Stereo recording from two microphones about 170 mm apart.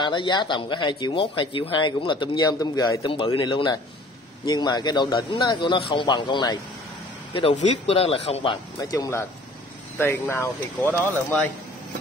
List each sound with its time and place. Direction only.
0.0 s speech: 25° left (ahead or behind)
7.5 s speech: 35° left (ahead or behind)
8.9 s speech: 20° left (ahead or behind)